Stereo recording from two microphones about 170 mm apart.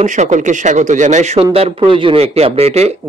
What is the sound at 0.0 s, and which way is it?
Speech, 45° right (ahead or behind).